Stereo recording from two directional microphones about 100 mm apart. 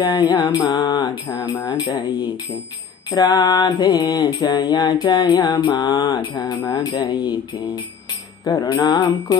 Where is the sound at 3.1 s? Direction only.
45° left (ahead or behind).